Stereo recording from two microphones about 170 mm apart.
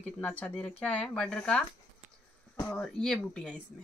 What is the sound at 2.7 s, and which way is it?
Speech, 5° left (ahead or behind).